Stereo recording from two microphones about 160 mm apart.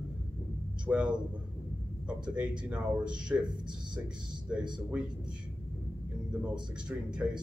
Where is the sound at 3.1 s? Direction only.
30° right (ahead or behind).